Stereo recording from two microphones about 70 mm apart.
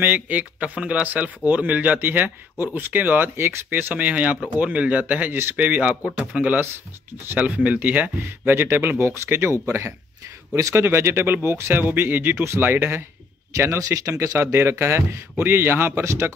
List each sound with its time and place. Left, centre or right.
0.0 s a man's voice: right
3.9 s a man's voice: right
13.5 s speech: right